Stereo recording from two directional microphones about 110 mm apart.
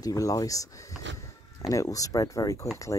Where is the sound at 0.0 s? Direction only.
35° left (ahead or behind).